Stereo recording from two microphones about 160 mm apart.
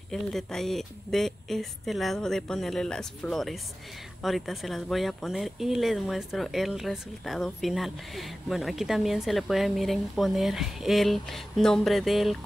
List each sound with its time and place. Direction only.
0.1 s speech: 5° left (ahead or behind)